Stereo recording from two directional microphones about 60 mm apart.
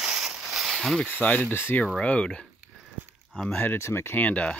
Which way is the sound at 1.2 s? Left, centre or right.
Left.